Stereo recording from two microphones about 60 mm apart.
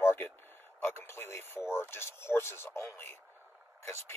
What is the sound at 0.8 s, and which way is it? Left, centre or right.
Speech, left.